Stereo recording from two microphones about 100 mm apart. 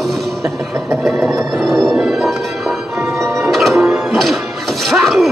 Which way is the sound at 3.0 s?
30° right (ahead or behind).